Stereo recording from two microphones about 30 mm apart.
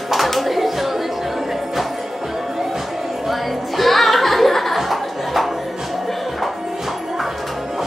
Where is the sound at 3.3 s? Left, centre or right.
Centre.